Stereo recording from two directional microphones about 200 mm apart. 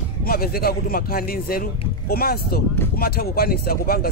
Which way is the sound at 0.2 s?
50° left (ahead or behind).